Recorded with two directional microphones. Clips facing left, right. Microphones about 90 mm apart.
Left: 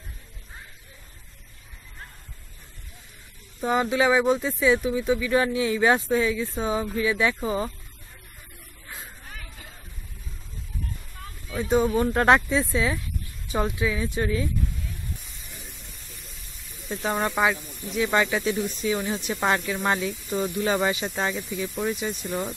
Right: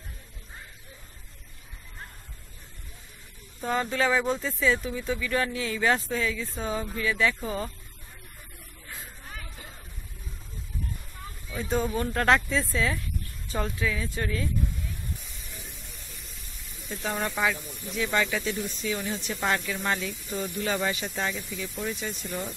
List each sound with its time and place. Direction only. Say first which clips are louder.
3.6 s speech: left 4 dB; 10° left (ahead or behind)
11.5 s speech: left 6 dB; 10° left (ahead or behind)
16.9 s speech: left 5 dB; 25° left (ahead or behind)